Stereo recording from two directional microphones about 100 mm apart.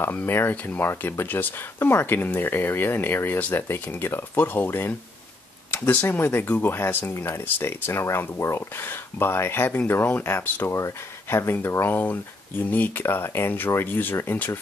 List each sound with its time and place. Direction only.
0.0 s speech: 20° left (ahead or behind)